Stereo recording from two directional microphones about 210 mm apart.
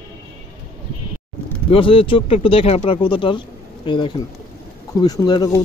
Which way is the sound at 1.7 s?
25° left (ahead or behind).